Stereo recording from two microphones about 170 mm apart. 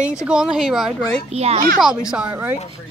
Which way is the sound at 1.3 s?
40° right (ahead or behind).